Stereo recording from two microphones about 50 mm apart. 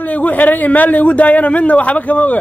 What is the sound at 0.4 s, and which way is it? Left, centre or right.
A man's voice, left.